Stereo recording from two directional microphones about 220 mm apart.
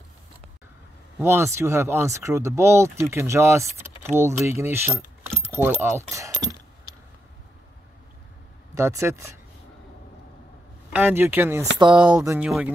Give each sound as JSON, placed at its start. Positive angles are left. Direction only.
{"t": 1.2, "sound": "speech", "side_deg": -10}
{"t": 8.7, "sound": "speech", "side_deg": -15}
{"t": 10.9, "sound": "speech", "side_deg": -10}
{"t": 11.8, "sound": "speech", "side_deg": -20}
{"t": 12.1, "sound": "speech", "side_deg": -10}